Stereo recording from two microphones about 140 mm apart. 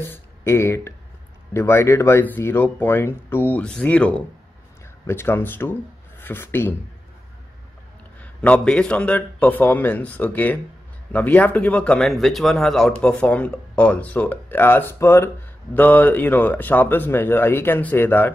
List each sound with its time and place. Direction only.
0.1 s speech: 15° left (ahead or behind)
8.2 s speech: 10° left (ahead or behind)